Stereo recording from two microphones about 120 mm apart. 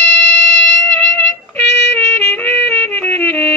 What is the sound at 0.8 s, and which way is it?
Music, 15° left (ahead or behind).